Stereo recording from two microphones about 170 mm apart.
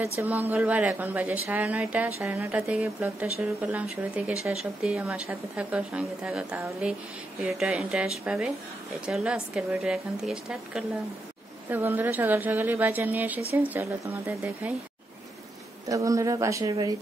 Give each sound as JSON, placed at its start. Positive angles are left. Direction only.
{"t": 0.2, "sound": "a woman's voice", "side_deg": -10}
{"t": 15.9, "sound": "speech", "side_deg": -20}